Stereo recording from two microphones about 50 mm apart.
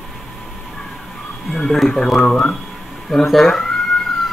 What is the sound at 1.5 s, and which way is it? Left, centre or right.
Speech, centre.